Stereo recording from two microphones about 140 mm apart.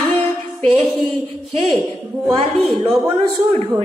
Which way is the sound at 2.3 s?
40° right (ahead or behind).